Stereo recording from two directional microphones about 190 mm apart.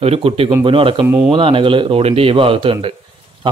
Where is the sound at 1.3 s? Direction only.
25° right (ahead or behind).